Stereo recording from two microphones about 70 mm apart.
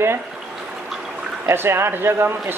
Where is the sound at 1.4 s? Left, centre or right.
Right.